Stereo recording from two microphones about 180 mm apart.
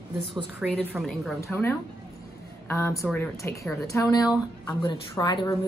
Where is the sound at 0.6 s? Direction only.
5° left (ahead or behind).